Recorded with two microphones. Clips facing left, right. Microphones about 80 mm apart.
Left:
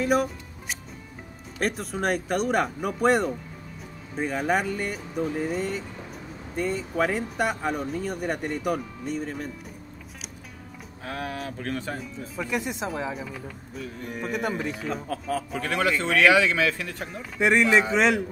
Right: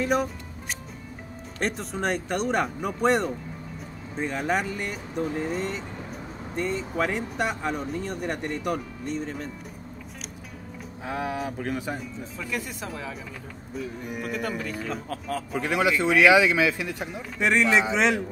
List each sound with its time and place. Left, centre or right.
0.0 s music: centre
1.6 s speech: centre
11.1 s speech: centre
12.4 s speech: left
13.1 s speech: centre
14.2 s speech: left
14.9 s speech: centre
15.6 s speech: centre
17.4 s speech: centre